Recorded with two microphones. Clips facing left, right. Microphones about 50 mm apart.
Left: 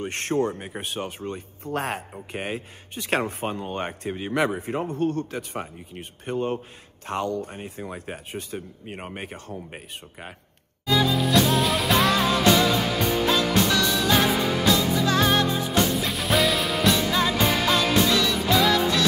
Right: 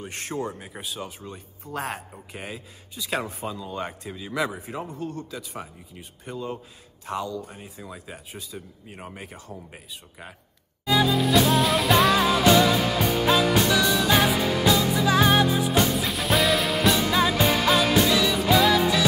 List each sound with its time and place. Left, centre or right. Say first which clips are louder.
0.0 s speech: left 6 dB; left
10.9 s music: right 1 dB; centre
13.3 s music: right 3 dB; centre